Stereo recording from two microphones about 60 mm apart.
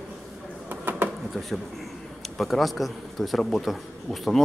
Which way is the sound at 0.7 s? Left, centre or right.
Right.